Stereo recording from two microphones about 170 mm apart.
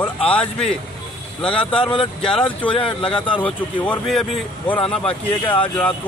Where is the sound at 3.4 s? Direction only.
5° left (ahead or behind).